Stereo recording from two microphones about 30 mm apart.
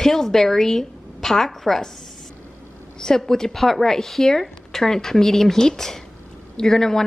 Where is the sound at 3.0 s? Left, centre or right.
Centre.